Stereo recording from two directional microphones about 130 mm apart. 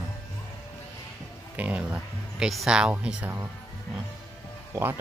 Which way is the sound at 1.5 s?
10° right (ahead or behind).